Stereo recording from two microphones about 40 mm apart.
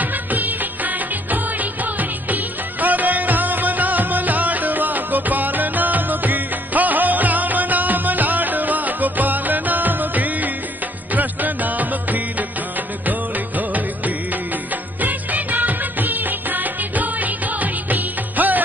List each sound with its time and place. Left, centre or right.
0.0 s music of bollywood: right
13.0 s music: right